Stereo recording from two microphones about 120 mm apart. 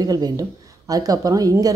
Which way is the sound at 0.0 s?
30° right (ahead or behind).